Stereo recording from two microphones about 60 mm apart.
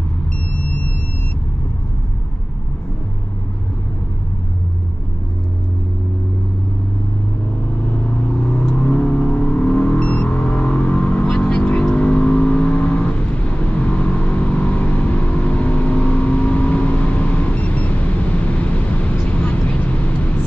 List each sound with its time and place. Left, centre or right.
0.5 s vehicle: left
8.4 s vehicle: left
8.7 s car: left